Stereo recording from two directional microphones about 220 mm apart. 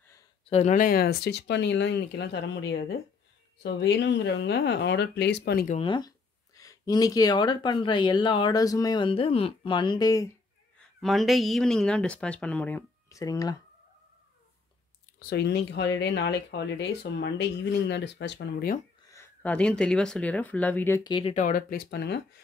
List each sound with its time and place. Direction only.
0.5 s speech: 30° left (ahead or behind)
5.8 s speech: 20° left (ahead or behind)
10.8 s speech: centre (ahead or behind)
15.1 s speech: 45° left (ahead or behind)
19.0 s speech: 10° left (ahead or behind)
21.4 s speech: 40° left (ahead or behind)